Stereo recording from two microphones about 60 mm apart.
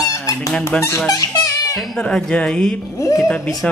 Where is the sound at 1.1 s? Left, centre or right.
Left.